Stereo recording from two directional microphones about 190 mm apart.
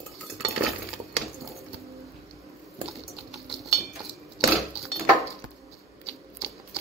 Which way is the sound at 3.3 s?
Centre (ahead or behind).